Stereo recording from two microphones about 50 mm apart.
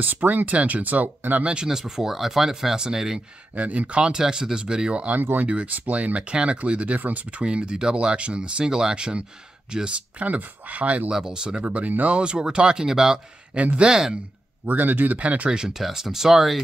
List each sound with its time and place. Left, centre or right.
0.0 s speech: right
1.4 s speech: centre
3.5 s speech: right
5.2 s speech: right
5.5 s speech: right
10.1 s speech: right
11.1 s speech: centre
11.6 s speech: right
12.2 s speech: centre
13.6 s speech: right
13.8 s speech: centre
14.7 s speech: right
15.1 s speech: right
15.8 s speech: centre